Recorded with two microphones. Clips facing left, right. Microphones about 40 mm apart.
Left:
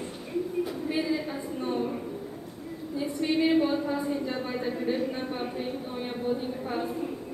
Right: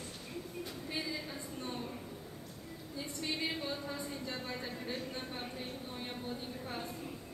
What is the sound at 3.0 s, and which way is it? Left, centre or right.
A woman's voice, centre.